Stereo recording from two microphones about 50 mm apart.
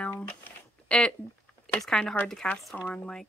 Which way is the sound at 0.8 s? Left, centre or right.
Left.